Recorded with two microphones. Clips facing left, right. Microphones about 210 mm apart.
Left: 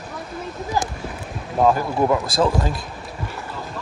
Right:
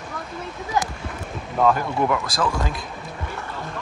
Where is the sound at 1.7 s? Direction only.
30° left (ahead or behind).